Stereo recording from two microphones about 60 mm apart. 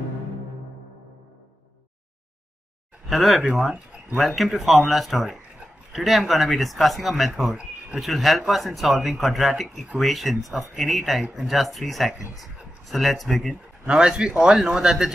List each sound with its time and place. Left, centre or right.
3.1 s speech: centre
13.8 s speech: centre